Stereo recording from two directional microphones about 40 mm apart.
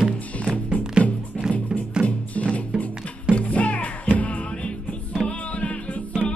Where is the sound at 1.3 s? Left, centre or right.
Left.